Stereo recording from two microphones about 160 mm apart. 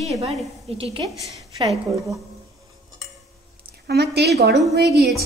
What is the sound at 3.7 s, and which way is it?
A woman's voice, 90° right.